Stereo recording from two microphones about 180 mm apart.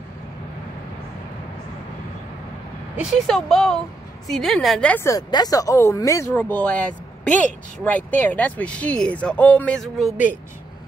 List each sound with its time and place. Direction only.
3.0 s speech: centre (ahead or behind)